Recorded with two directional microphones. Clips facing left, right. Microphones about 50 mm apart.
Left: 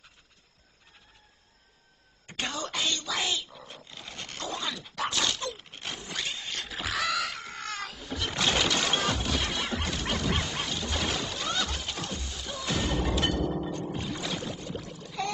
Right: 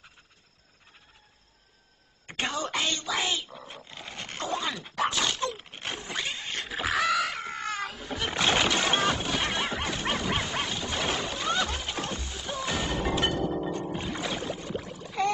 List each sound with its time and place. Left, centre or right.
2.2 s dog: right
8.0 s music: right